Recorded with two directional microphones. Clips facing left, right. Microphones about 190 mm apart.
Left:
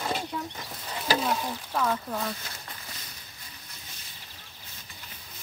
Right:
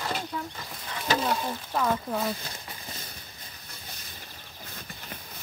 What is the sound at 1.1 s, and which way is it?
Speech, centre (ahead or behind).